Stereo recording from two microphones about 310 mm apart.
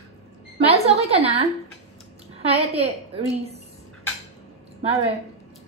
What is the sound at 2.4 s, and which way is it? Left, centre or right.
Speech, centre.